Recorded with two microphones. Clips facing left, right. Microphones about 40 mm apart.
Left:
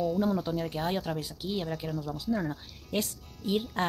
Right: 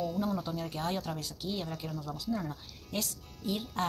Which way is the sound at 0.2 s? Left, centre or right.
Left.